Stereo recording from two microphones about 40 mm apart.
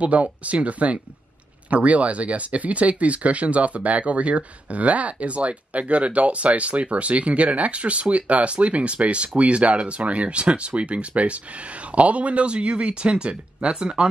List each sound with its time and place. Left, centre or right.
0.0 s speech: right